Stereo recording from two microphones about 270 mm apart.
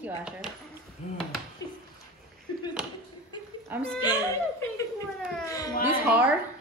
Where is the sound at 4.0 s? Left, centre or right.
Centre.